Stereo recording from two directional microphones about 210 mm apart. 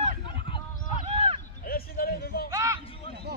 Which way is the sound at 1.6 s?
45° left (ahead or behind).